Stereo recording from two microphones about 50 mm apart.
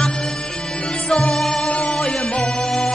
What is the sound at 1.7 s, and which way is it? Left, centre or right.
Music, left.